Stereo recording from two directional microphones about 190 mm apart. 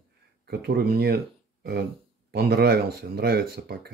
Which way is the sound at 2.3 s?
55° right (ahead or behind).